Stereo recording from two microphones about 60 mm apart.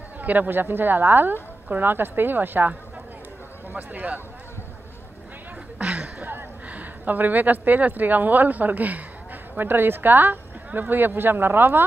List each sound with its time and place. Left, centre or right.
0.2 s speech: right
3.7 s speech: right
5.8 s a sound: centre
6.2 s speech: right